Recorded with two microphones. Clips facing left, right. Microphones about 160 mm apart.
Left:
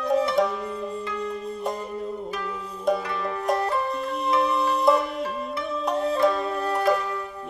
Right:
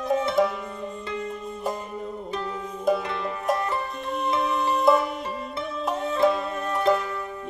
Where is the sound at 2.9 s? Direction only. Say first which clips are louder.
Even; centre (ahead or behind).